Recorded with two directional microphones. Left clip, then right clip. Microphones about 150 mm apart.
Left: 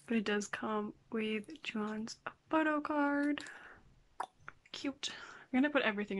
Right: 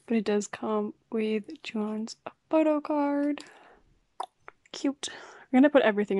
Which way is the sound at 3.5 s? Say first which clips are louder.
Left 1 dB; 25° right (ahead or behind).